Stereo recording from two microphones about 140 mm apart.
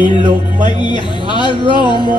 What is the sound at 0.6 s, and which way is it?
Speech, 35° left (ahead or behind).